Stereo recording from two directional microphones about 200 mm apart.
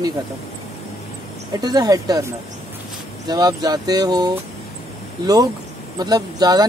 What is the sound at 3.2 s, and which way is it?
Speech, 20° right (ahead or behind).